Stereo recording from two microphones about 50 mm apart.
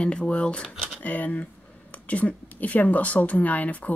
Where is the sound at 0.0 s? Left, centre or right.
Left.